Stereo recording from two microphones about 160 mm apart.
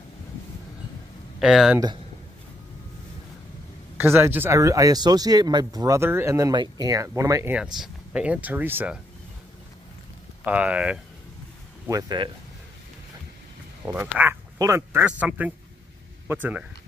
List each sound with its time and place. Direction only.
1.4 s speech: 5° right (ahead or behind)
4.0 s speech: 15° right (ahead or behind)
7.5 s speech: 5° right (ahead or behind)
10.4 s speech: 5° right (ahead or behind)
11.9 s speech: 25° right (ahead or behind)
14.1 s speech: 15° right (ahead or behind)